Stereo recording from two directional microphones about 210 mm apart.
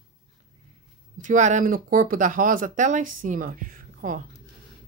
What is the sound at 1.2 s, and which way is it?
Speech, 35° right (ahead or behind).